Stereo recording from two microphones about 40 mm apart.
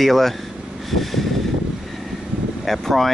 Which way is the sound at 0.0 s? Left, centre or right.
Centre.